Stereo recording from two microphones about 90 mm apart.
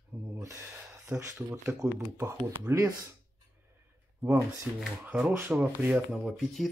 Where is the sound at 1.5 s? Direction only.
35° right (ahead or behind).